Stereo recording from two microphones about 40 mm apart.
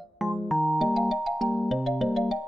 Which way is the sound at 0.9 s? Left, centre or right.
Centre.